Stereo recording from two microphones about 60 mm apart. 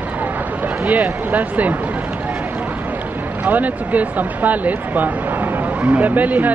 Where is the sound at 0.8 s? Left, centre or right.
Right.